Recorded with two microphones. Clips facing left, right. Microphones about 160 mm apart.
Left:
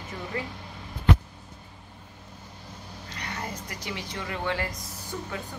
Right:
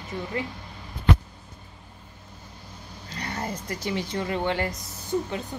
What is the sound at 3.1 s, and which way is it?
Speech, 35° right (ahead or behind).